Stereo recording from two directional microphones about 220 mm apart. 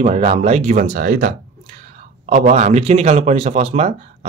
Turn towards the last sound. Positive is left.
turn(degrees=-30)  # may be behind; listen again after turning